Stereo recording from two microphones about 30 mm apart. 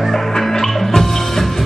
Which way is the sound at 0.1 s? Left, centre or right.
Centre.